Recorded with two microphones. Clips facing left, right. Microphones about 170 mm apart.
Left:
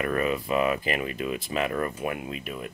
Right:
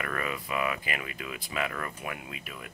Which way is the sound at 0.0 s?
25° left (ahead or behind).